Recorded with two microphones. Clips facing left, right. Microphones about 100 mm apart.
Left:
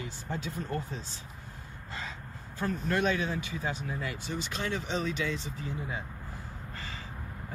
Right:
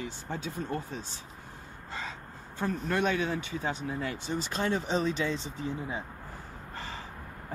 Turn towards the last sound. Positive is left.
turn(degrees=-30)  # may be behind; listen again after turning